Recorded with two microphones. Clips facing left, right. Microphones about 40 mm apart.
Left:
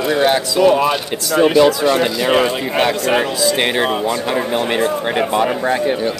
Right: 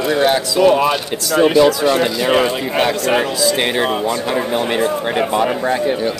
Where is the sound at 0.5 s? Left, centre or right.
Centre.